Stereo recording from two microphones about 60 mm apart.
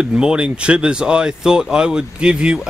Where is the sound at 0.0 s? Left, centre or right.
Centre.